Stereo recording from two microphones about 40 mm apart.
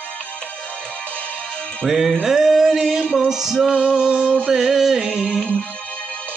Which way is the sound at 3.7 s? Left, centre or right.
Right.